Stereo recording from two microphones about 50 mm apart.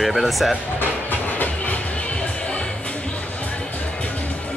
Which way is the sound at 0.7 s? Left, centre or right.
Left.